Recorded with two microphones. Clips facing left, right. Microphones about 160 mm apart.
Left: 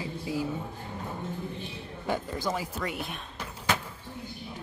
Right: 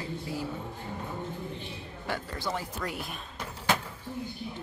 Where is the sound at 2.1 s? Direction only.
20° left (ahead or behind).